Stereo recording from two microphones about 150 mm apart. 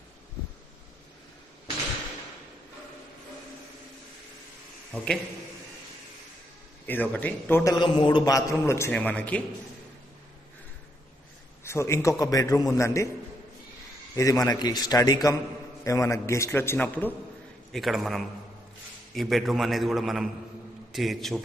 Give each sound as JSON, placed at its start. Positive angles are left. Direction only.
{"t": 4.9, "sound": "a man's voice", "side_deg": 5}
{"t": 6.9, "sound": "speech", "side_deg": 10}
{"t": 7.7, "sound": "a man's voice", "side_deg": 35}
{"t": 11.6, "sound": "a man's voice", "side_deg": 20}
{"t": 14.1, "sound": "a man's voice", "side_deg": 20}
{"t": 17.7, "sound": "a man's voice", "side_deg": 0}